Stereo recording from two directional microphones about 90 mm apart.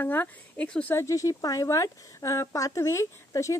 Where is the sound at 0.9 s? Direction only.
35° left (ahead or behind).